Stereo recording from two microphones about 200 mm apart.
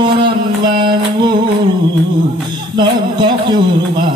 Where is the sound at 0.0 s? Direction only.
25° right (ahead or behind).